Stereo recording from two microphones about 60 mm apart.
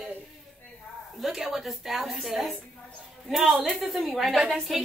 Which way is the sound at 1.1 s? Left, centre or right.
Centre.